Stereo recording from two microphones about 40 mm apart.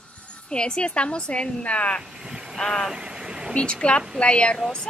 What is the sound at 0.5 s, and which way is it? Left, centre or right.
Speech, left.